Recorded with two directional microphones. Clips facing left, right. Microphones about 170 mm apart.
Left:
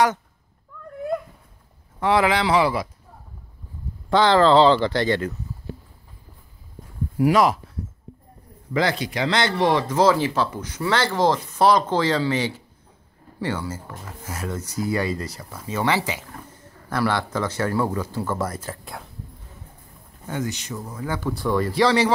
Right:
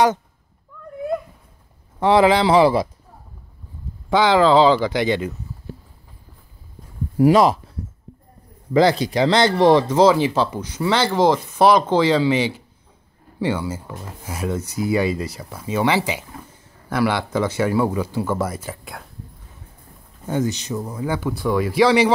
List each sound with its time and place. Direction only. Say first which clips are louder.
2.0 s speech: right 5 dB; 30° right (ahead or behind)
4.1 s speech: right 1 dB; 10° right (ahead or behind)
7.2 s speech: right 4 dB; 30° right (ahead or behind)
8.7 s speech: right 7 dB; 35° right (ahead or behind)
9.8 s speech: right 4 dB; 20° right (ahead or behind); by 19.0 s 5° right (ahead or behind)
20.2 s speech: right 6 dB; 25° right (ahead or behind)
21.3 s speech: even; 5° right (ahead or behind)